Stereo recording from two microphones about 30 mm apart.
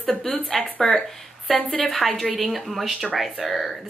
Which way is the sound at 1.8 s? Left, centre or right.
Centre.